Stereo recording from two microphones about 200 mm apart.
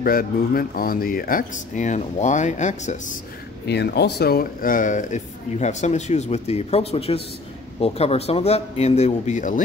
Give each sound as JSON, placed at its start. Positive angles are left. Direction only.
{"t": 0.0, "sound": "speech", "side_deg": 45}
{"t": 3.6, "sound": "speech", "side_deg": 55}